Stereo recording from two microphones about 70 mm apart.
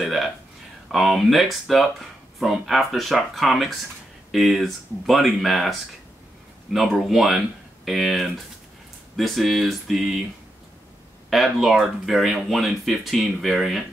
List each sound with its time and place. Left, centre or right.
0.0 s a sound: centre
0.9 s speech: centre
11.2 s speech: centre